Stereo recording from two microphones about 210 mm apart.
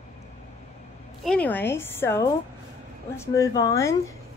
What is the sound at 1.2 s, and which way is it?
Speech, 5° left (ahead or behind).